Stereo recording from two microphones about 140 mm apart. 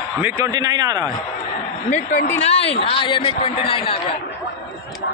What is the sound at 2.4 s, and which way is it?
A man's voice, 45° left (ahead or behind).